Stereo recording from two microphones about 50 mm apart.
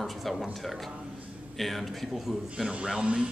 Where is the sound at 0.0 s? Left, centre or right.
Centre.